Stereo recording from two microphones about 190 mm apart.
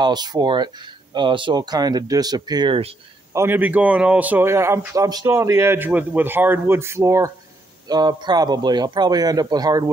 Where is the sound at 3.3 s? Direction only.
15° right (ahead or behind).